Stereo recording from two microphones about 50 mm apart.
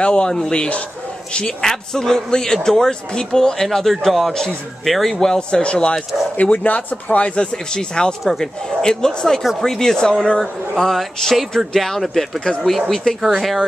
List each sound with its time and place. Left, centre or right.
0.0 s a man's voice: centre
4.3 s a man's voice: centre
4.8 s a man's voice: centre
5.6 s a man's voice: left
13.2 s speech: centre